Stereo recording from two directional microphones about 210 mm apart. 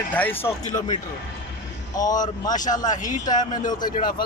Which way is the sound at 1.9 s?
15° left (ahead or behind).